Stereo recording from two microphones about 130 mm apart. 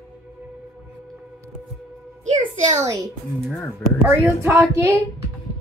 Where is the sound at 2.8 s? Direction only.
25° right (ahead or behind).